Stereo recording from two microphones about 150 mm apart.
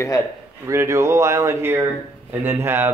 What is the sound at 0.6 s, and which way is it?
Speech, 20° right (ahead or behind).